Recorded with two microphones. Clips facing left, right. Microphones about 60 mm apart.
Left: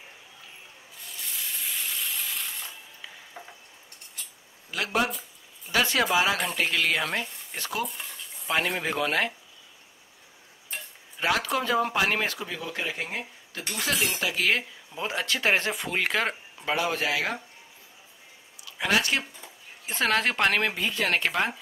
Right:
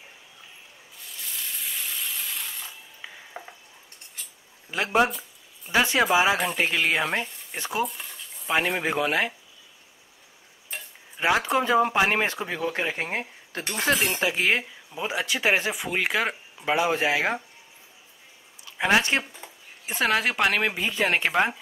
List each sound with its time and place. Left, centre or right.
1.0 s a sound: centre
3.0 s a sound: right
4.6 s speech: right
7.8 s speech: centre
8.5 s speech: centre
11.1 s speech: right
14.3 s speech: right
14.6 s speech: centre
16.6 s speech: right
18.8 s speech: right
19.9 s speech: centre